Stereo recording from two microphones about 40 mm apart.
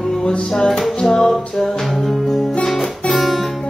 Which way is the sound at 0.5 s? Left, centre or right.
Centre.